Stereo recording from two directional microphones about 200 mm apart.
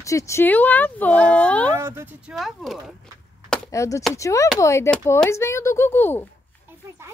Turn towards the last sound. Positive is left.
turn(degrees=10)  # may be behind; listen again after turning